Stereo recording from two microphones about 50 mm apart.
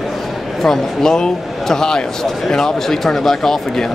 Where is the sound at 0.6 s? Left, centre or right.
Centre.